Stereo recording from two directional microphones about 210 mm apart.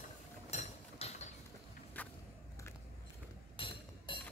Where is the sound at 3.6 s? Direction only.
25° left (ahead or behind).